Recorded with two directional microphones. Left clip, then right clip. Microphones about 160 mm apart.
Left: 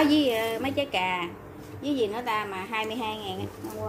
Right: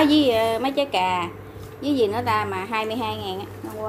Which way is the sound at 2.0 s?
25° right (ahead or behind).